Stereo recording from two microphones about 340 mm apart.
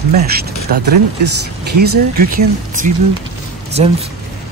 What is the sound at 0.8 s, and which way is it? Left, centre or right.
Speech, right.